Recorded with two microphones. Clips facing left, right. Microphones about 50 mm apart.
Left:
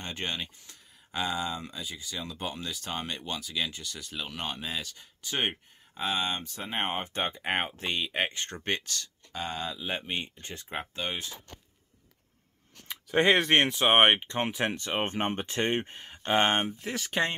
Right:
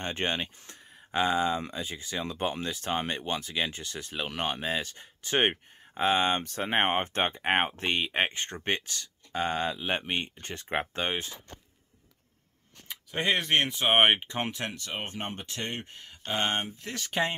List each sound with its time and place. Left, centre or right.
0.0 s speech: right
9.3 s speech: right
13.1 s speech: left
13.7 s speech: centre
14.6 s speech: left
16.7 s speech: centre